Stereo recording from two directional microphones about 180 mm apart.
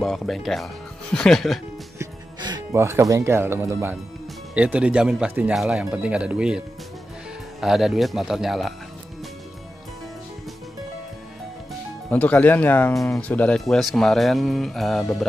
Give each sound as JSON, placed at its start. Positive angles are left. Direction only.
{"t": 0.0, "sound": "speech", "side_deg": 0}
{"t": 2.0, "sound": "speech", "side_deg": -20}
{"t": 7.6, "sound": "speech", "side_deg": 0}
{"t": 12.1, "sound": "speech", "side_deg": 10}